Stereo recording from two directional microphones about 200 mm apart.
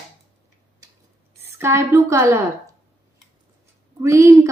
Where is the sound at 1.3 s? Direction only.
15° right (ahead or behind).